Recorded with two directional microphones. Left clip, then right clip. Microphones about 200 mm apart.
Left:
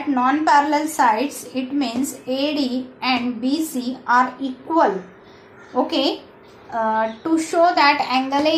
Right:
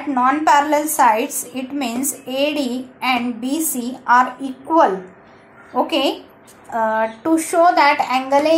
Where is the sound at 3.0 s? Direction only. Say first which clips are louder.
Right 2 dB; 35° right (ahead or behind).